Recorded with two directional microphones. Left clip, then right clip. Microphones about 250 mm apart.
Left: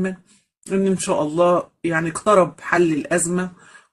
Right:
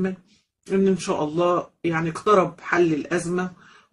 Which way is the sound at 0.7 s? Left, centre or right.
Left.